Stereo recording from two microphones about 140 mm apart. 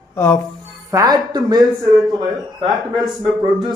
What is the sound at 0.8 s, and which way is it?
Speech, 25° right (ahead or behind).